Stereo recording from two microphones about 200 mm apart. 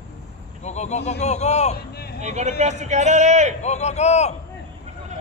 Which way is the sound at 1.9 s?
55° left (ahead or behind).